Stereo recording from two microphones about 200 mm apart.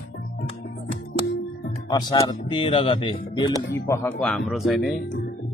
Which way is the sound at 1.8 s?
20° left (ahead or behind).